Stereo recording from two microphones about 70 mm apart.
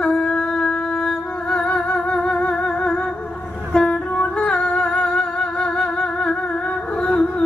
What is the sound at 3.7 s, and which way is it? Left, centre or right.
Humming, centre.